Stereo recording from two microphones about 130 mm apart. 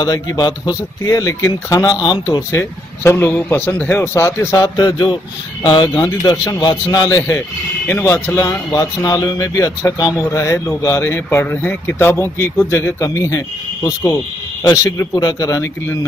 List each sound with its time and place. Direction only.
0.0 s speech: 30° left (ahead or behind)
2.5 s speech: 20° left (ahead or behind)